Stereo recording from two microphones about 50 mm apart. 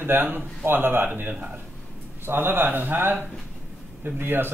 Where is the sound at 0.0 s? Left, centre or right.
Right.